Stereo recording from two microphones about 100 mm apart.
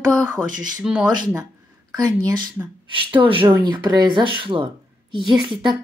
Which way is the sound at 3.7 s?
45° right (ahead or behind).